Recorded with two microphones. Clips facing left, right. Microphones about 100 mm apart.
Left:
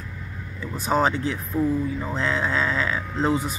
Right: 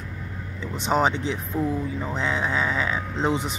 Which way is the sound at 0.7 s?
20° right (ahead or behind).